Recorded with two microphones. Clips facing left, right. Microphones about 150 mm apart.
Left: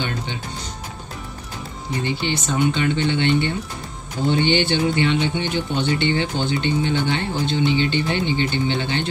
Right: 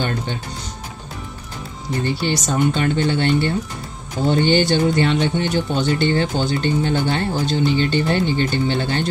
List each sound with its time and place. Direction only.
2.0 s speech: 40° right (ahead or behind)